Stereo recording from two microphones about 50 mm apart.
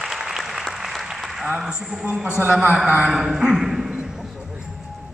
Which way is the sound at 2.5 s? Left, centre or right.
Right.